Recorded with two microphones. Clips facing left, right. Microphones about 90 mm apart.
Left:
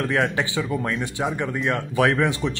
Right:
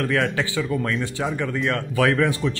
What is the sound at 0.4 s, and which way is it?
Speech, 20° left (ahead or behind).